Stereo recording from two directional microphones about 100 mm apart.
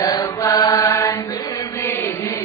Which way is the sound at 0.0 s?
30° left (ahead or behind).